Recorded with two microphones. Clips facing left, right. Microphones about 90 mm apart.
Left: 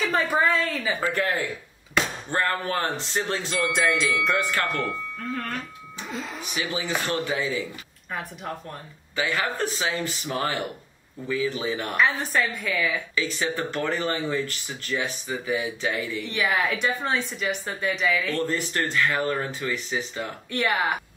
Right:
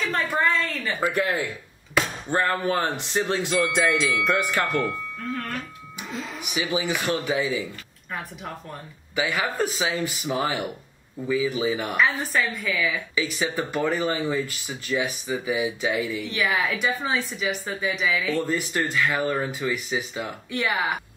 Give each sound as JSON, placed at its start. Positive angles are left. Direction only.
{"t": 0.0, "sound": "a woman's voice", "side_deg": 5}
{"t": 1.0, "sound": "speech", "side_deg": -15}
{"t": 3.5, "sound": "a woman's voice", "side_deg": 0}
{"t": 6.4, "sound": "speech", "side_deg": -15}
{"t": 8.1, "sound": "a woman's voice", "side_deg": 0}
{"t": 9.1, "sound": "a woman's voice", "side_deg": -15}
{"t": 13.1, "sound": "speech", "side_deg": -10}
{"t": 16.3, "sound": "a woman's voice", "side_deg": 0}